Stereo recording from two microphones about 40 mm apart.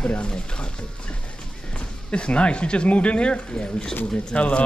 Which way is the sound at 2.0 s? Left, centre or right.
Left.